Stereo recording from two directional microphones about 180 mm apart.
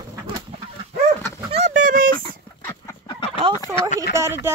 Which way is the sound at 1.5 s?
40° right (ahead or behind).